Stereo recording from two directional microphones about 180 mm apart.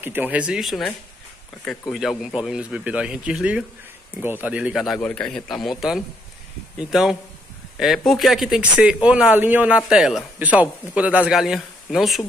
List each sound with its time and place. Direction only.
0.0 s speech: 10° right (ahead or behind)